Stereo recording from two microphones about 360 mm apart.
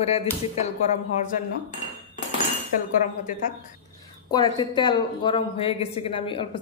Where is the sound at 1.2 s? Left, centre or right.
Left.